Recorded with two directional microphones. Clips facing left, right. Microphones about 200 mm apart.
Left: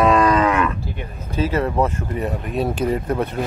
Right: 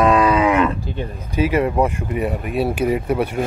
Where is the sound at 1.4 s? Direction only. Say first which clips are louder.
Right 2 dB; 15° right (ahead or behind).